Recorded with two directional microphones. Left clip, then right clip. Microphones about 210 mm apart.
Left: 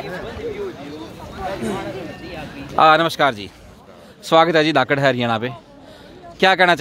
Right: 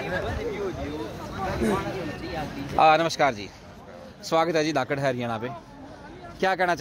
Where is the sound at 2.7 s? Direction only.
35° left (ahead or behind).